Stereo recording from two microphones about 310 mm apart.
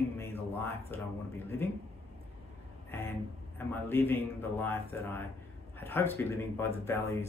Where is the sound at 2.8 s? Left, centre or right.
Centre.